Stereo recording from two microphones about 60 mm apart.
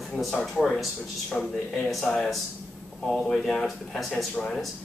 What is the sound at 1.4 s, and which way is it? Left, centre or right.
Speech, centre.